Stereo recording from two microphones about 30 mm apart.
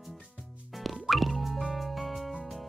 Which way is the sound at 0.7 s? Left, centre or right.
Centre.